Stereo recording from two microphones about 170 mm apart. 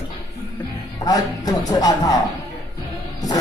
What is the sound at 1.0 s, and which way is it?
A man's voice, 20° left (ahead or behind).